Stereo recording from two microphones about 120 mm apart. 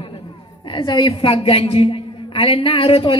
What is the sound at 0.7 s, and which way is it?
A woman's voice, 40° left (ahead or behind).